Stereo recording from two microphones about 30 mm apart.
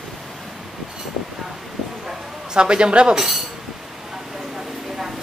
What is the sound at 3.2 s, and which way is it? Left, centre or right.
Speech, centre.